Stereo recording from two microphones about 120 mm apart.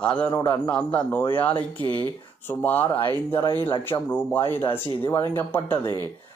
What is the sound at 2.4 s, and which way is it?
Speech, 15° left (ahead or behind).